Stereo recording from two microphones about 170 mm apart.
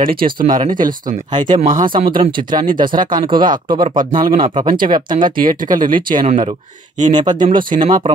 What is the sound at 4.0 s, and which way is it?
Speech, 55° right (ahead or behind).